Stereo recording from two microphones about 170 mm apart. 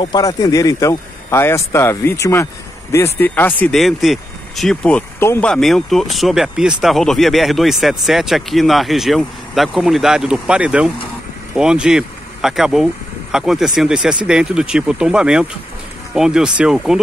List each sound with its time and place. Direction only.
0.0 s speech: 25° left (ahead or behind); by 17.0 s 5° right (ahead or behind)